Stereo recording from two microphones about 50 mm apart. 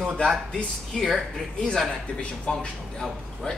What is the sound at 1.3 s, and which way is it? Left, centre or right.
A man's voice, centre.